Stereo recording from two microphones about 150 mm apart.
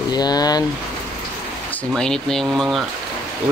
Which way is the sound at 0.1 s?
25° left (ahead or behind).